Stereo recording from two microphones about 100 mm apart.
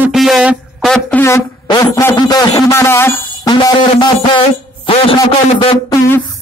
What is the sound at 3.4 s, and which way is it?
Speech, 40° left (ahead or behind).